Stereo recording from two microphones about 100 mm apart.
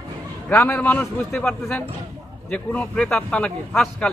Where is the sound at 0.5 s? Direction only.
20° left (ahead or behind).